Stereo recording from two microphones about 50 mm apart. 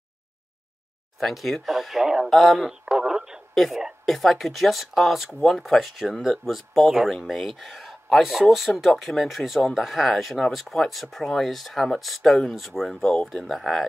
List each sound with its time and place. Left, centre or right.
1.2 s speech: centre
2.8 s radio: centre
3.5 s speech: centre
13.0 s speech: centre
13.3 s speech: centre